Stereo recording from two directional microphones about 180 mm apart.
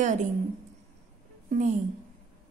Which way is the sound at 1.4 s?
45° right (ahead or behind).